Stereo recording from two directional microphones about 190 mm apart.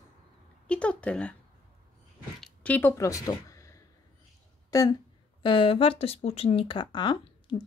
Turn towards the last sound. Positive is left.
turn(degrees=25)  # may be behind; listen again after turning